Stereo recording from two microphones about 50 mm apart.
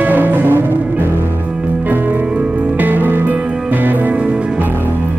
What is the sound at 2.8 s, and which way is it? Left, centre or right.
Music, right.